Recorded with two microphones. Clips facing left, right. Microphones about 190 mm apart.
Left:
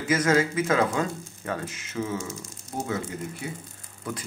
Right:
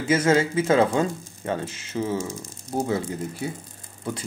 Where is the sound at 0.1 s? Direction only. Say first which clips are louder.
Right 3 dB; 30° right (ahead or behind).